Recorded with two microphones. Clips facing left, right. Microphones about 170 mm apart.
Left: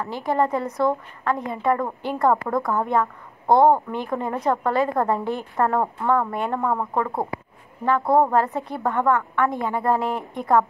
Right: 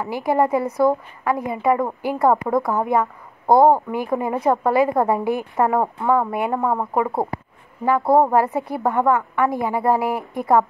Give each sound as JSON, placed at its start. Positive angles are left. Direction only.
{"t": 0.0, "sound": "speech", "side_deg": -10}
{"t": 7.1, "sound": "speech", "side_deg": -30}
{"t": 8.1, "sound": "speech", "side_deg": -10}